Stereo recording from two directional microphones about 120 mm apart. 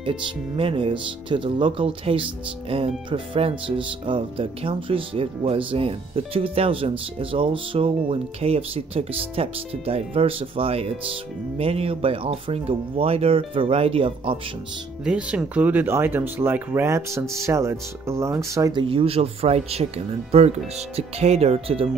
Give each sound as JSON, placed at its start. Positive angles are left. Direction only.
{"t": 0.0, "sound": "speech", "side_deg": -45}
{"t": 15.0, "sound": "speech", "side_deg": -10}
{"t": 18.8, "sound": "speech", "side_deg": -50}